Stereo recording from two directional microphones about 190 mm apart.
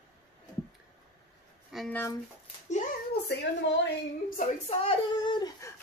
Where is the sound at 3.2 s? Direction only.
65° left (ahead or behind).